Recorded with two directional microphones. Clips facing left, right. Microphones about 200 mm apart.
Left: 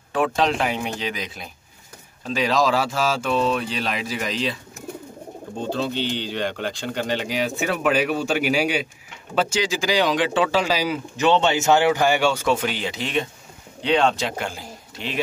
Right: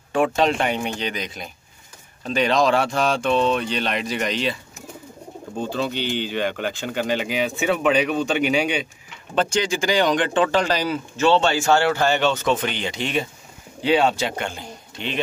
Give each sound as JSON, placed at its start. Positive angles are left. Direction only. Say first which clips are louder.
{"t": 0.1, "sound": "a man's voice", "louder": "right 2 dB", "side_deg": 0}
{"t": 5.7, "sound": "a man's voice", "louder": "left 1 dB", "side_deg": 0}